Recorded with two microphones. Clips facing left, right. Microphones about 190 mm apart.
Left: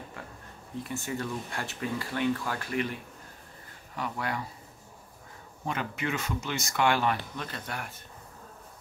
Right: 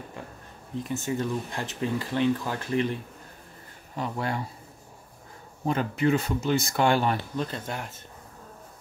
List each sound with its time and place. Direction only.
0.8 s speech: 20° right (ahead or behind)
3.9 s speech: 25° right (ahead or behind)
5.7 s speech: 35° right (ahead or behind)